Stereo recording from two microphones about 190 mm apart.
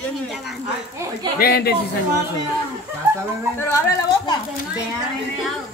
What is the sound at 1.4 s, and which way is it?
Speech, 55° left (ahead or behind).